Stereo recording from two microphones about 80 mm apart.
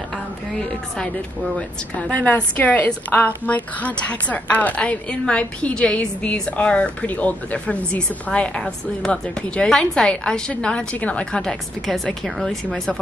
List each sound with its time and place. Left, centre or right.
0.6 s a woman's voice: centre
11.8 s speech: centre